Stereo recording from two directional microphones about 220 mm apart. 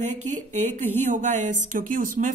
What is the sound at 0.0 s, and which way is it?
Speech, 30° right (ahead or behind).